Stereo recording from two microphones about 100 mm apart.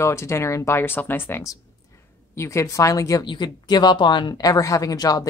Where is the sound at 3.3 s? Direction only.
45° left (ahead or behind).